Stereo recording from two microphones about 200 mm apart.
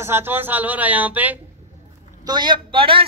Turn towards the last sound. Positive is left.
turn(degrees=-25)  # may be behind; listen again after turning